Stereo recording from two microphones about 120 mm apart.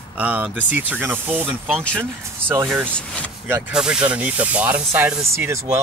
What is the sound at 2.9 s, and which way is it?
Speech, 10° left (ahead or behind).